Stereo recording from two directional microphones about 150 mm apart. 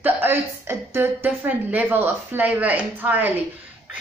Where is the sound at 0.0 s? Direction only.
15° right (ahead or behind).